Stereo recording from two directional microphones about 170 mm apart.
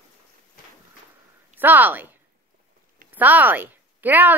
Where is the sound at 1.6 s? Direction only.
10° right (ahead or behind).